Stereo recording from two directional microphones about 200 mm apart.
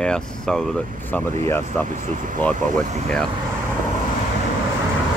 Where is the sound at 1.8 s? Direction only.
40° right (ahead or behind).